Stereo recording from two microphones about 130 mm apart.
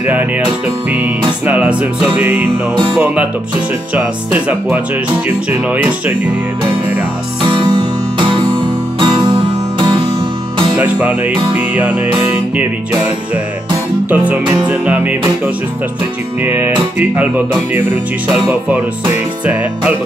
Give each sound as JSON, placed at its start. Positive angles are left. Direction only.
{"t": 0.0, "sound": "music", "side_deg": -15}
{"t": 2.7, "sound": "music", "side_deg": -40}
{"t": 3.9, "sound": "music", "side_deg": -10}
{"t": 7.4, "sound": "music", "side_deg": -40}
{"t": 9.0, "sound": "music", "side_deg": -35}
{"t": 10.8, "sound": "music", "side_deg": -10}
{"t": 14.1, "sound": "music", "side_deg": -10}